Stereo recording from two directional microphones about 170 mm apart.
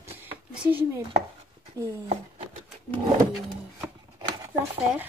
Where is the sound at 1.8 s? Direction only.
20° right (ahead or behind).